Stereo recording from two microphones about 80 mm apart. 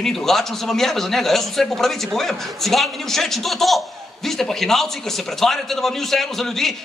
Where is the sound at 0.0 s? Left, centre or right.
Centre.